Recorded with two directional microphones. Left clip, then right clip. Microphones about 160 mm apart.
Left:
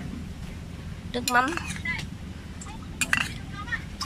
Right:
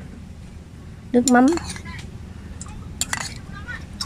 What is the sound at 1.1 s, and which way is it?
Speech, 40° right (ahead or behind).